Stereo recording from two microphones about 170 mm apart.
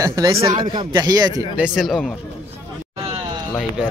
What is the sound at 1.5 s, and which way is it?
Speech, 5° right (ahead or behind).